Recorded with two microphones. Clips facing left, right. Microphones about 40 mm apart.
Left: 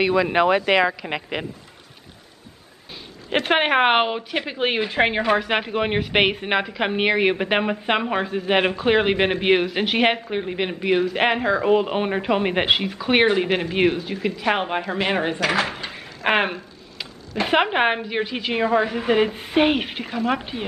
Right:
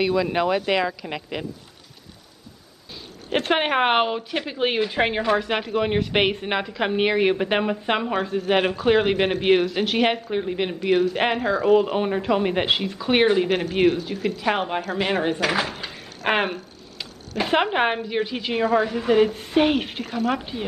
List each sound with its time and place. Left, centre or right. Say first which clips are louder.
0.0 s speech: left 3 dB; left
3.4 s a woman's voice: left 3 dB; centre
11.4 s speech: even; left; by 13.5 s centre
13.5 s speech: even; left
14.4 s a woman's voice: left 2 dB; centre
20.1 s speech: left 1 dB; left
20.3 s a woman's voice: even; centre